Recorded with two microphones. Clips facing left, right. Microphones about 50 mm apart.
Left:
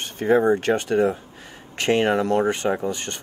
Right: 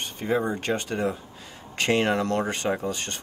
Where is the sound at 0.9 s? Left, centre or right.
Centre.